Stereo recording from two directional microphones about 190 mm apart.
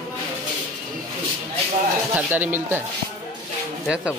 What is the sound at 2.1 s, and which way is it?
Speech, 10° right (ahead or behind).